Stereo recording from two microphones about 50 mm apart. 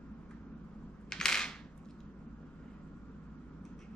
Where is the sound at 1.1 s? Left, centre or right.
Centre.